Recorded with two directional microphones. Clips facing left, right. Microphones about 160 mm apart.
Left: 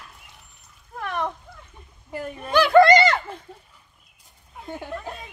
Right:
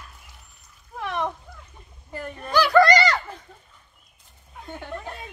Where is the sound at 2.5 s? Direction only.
25° left (ahead or behind).